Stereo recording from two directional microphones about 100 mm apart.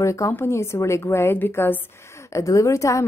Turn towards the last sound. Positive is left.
turn(degrees=30)  # may be behind; listen again after turning